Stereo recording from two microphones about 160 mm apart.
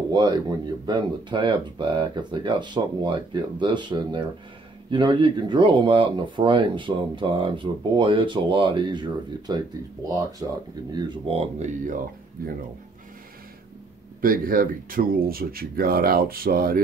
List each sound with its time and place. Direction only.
0.1 s speech: 30° right (ahead or behind)
11.3 s speech: 45° right (ahead or behind)
14.2 s speech: 60° right (ahead or behind)